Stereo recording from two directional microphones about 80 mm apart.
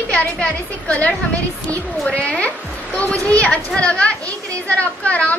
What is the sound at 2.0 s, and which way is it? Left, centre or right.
A child's voice, centre.